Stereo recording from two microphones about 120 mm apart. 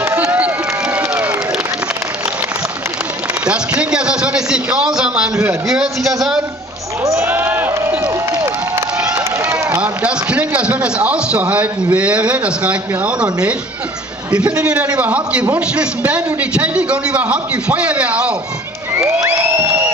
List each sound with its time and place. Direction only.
0.0 s run: 15° right (ahead or behind)
0.9 s crowd: 10° right (ahead or behind)
3.4 s a man's voice: 10° right (ahead or behind)
7.1 s speech: 20° right (ahead or behind)
8.0 s crowd: 25° right (ahead or behind)
9.1 s a man's voice: 20° right (ahead or behind)
19.2 s music: 20° right (ahead or behind)